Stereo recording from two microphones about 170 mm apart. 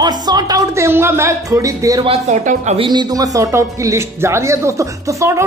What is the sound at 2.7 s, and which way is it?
Speech, 25° right (ahead or behind).